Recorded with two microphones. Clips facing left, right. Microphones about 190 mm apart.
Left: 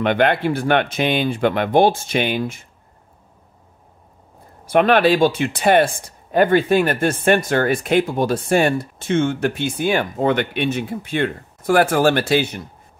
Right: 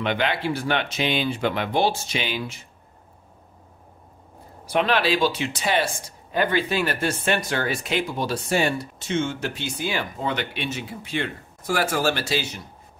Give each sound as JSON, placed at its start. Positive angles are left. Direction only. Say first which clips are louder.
{"t": 0.0, "sound": "speech", "louder": "left 7 dB", "side_deg": 55}
{"t": 4.6, "sound": "speech", "louder": "left 7 dB", "side_deg": 50}